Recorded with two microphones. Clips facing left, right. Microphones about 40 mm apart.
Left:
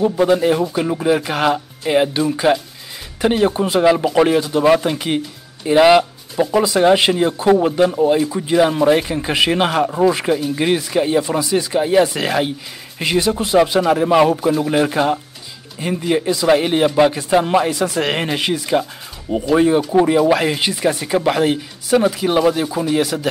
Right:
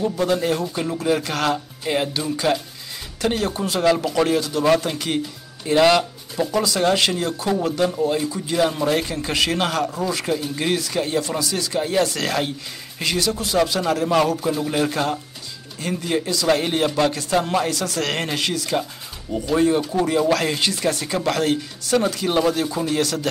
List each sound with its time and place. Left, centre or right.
0.0 s speech: centre